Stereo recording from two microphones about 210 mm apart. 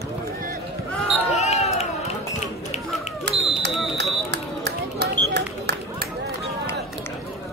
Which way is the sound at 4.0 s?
55° right (ahead or behind).